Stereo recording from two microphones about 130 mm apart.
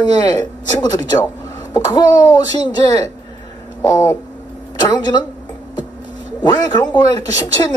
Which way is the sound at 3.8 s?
25° left (ahead or behind).